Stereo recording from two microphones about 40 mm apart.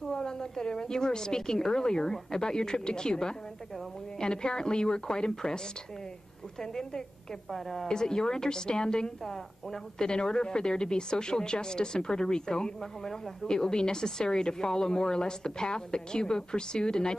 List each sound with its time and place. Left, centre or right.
0.0 s a woman's voice: centre
6.6 s a woman's voice: centre
7.9 s a woman's voice: centre